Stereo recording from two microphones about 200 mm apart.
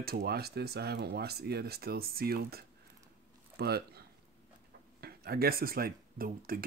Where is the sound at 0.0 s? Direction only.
50° right (ahead or behind).